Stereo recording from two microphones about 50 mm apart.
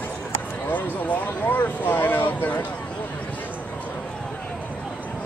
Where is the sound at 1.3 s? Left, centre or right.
Left.